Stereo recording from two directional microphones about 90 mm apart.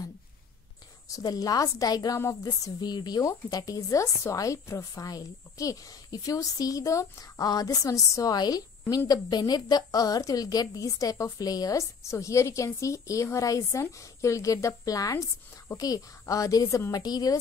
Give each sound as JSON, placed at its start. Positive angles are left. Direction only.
{"t": 1.1, "sound": "a woman's voice", "side_deg": 45}